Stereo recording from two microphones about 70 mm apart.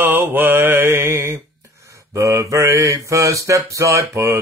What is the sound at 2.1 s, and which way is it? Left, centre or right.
Mantra, right.